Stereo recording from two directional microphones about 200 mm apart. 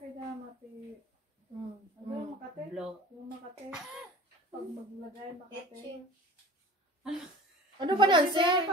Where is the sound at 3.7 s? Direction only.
5° right (ahead or behind).